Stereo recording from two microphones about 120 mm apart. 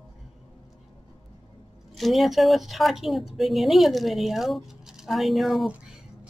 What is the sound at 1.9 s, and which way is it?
A woman's voice, centre (ahead or behind).